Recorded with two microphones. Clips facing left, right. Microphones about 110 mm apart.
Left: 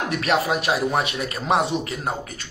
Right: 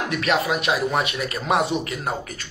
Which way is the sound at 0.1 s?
35° left (ahead or behind).